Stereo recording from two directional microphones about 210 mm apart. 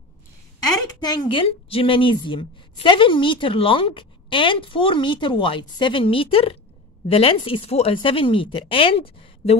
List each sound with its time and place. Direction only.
1.0 s a woman's voice: 20° left (ahead or behind)